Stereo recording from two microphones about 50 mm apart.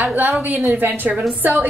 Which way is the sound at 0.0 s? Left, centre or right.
Right.